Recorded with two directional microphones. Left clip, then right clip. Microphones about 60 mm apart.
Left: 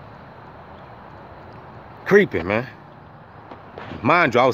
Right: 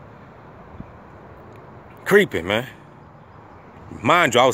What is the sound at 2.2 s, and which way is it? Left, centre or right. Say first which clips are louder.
Speech: even; centre.